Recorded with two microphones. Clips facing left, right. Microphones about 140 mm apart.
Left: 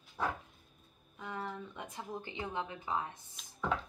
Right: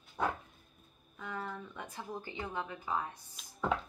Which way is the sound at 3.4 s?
Centre (ahead or behind).